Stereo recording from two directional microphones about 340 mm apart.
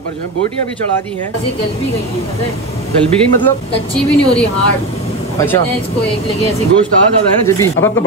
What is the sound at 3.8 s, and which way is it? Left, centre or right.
Speech, centre.